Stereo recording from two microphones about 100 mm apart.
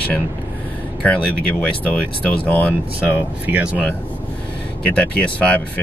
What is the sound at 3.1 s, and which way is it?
Speech, 15° right (ahead or behind).